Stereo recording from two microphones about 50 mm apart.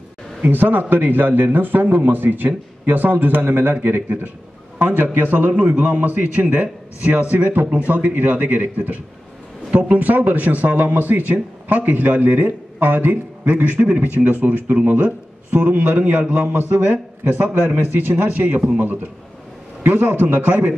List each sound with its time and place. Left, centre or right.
0.4 s a man's voice: right
19.8 s speech: right